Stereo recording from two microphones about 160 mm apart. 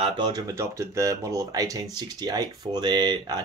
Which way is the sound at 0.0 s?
25° right (ahead or behind).